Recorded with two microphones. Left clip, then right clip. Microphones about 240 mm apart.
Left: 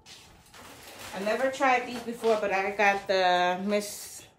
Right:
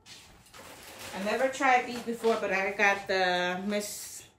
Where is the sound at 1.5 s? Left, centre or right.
Centre.